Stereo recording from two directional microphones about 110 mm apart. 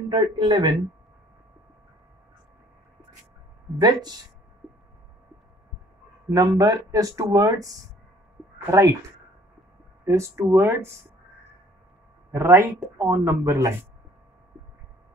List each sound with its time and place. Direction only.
0.1 s speech: 40° right (ahead or behind)
3.7 s speech: 40° right (ahead or behind)
6.3 s speech: 30° right (ahead or behind)
10.0 s speech: 25° right (ahead or behind)
12.3 s speech: 25° right (ahead or behind)